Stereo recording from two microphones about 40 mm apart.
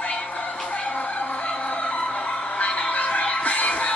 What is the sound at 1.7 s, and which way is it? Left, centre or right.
Music, left.